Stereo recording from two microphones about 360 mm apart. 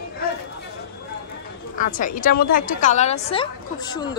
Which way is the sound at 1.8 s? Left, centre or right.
Left.